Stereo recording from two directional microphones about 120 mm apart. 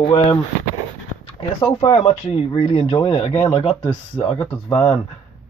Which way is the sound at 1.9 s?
55° left (ahead or behind).